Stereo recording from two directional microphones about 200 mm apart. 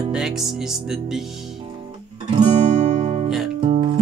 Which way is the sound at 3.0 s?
35° right (ahead or behind).